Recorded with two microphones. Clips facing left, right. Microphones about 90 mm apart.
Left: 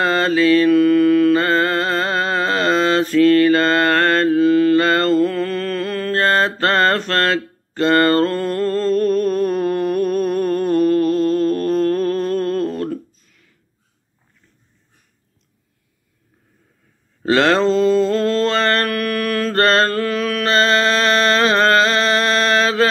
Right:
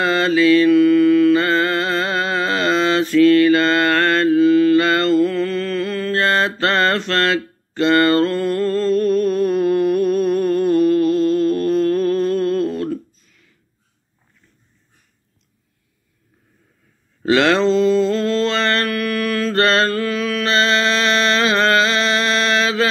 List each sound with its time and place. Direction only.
0.0 s mantra: 40° left (ahead or behind)
17.2 s mantra: 40° left (ahead or behind)